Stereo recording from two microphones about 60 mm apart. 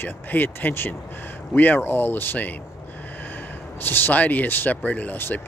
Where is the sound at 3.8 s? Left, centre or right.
Left.